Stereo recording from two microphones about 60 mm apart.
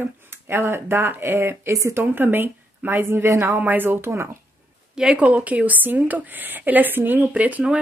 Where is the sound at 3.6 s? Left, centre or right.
Right.